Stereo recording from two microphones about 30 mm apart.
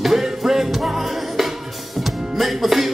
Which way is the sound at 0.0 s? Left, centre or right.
Centre.